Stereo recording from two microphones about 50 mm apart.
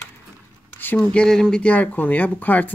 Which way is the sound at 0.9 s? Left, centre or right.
Centre.